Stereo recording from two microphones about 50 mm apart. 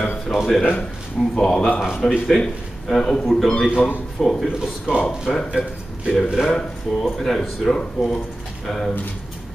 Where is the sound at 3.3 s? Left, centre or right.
Centre.